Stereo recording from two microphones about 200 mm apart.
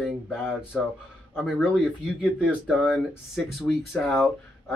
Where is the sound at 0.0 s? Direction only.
5° right (ahead or behind).